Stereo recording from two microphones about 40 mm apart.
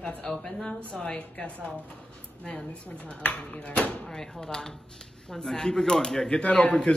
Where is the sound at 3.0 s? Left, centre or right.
Left.